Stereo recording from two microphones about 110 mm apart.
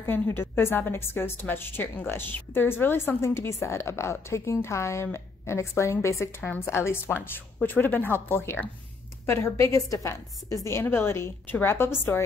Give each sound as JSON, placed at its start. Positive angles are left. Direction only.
{"t": 0.0, "sound": "a woman's voice", "side_deg": 20}